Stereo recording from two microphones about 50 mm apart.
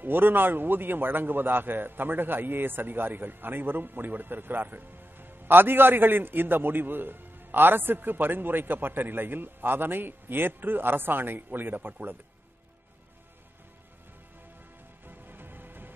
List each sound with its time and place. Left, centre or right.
0.0 s a man's voice: right
15.0 s music: right